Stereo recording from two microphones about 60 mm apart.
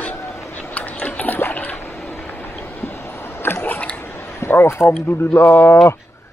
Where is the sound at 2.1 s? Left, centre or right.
Left.